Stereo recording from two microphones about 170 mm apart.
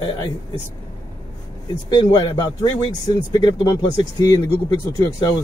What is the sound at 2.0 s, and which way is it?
A man's voice, 30° left (ahead or behind).